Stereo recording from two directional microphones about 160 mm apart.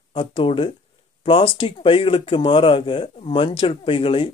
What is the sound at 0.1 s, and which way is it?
Speech, 35° left (ahead or behind).